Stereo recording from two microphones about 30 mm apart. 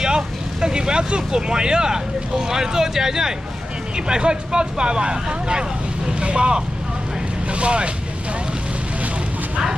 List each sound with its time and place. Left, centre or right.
0.6 s speech: right